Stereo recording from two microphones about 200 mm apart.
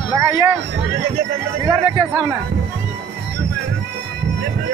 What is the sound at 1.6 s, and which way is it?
Speech, 20° right (ahead or behind).